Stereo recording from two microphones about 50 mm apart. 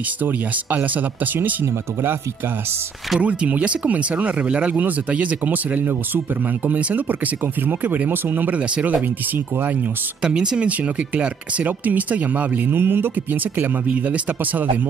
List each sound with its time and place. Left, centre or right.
0.2 s speech: right
3.2 s speech: right
10.2 s speech: centre
10.8 s speech: right
13.8 s speech: right